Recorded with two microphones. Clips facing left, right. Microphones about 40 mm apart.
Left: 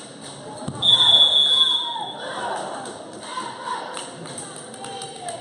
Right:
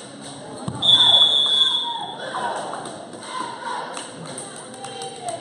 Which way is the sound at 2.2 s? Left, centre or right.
Centre.